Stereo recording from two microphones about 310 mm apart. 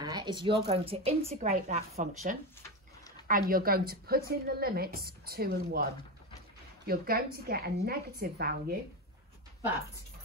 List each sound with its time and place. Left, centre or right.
0.0 s a woman's voice: centre; by 5.9 s right
6.9 s a woman's voice: right